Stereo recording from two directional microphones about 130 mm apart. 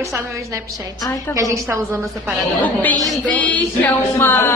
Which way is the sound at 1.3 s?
25° right (ahead or behind).